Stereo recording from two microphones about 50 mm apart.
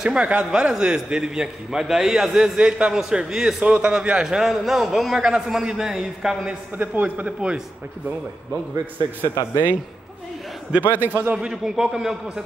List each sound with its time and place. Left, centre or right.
0.0 s a man's voice: centre
4.5 s speech: centre
5.2 s a man's voice: centre
6.8 s a woman's voice: right
9.2 s a woman's voice: right
10.7 s a man's voice: centre
11.1 s a woman's voice: right
11.3 s a man's voice: centre